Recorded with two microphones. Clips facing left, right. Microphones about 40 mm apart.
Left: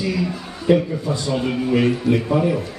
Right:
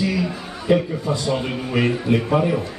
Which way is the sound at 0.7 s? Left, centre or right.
Centre.